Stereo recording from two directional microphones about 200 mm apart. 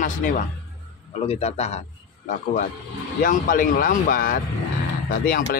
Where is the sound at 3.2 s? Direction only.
45° left (ahead or behind).